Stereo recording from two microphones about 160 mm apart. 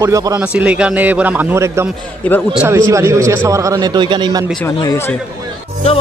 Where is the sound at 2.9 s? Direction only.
20° right (ahead or behind).